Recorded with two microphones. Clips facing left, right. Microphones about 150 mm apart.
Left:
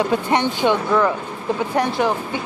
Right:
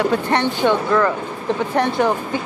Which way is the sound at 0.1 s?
15° left (ahead or behind).